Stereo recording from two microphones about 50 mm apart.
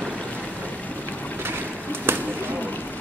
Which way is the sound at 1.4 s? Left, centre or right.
Right.